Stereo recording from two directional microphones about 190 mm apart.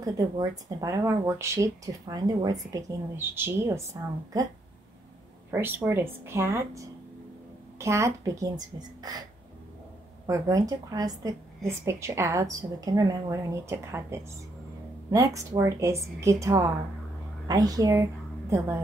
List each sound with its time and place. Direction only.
0.0 s a woman's voice: 20° right (ahead or behind)
5.5 s a woman's voice: 10° right (ahead or behind)
7.8 s a woman's voice: 15° right (ahead or behind)
10.2 s a woman's voice: 15° right (ahead or behind)